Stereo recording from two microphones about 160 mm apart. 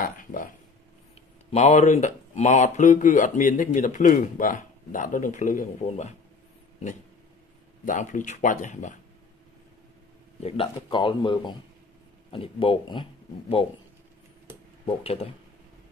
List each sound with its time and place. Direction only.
0.0 s a sound: 60° left (ahead or behind)
1.5 s speech: 45° left (ahead or behind)
7.8 s speech: 55° left (ahead or behind)
10.4 s speech: 35° left (ahead or behind)
14.9 s speech: 40° left (ahead or behind)